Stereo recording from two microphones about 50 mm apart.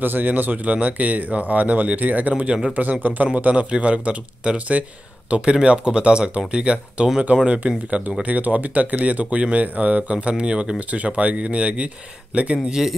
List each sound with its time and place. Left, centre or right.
0.0 s a man's voice: right